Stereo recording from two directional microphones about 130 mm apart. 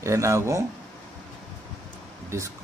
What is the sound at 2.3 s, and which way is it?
Speech, 20° right (ahead or behind).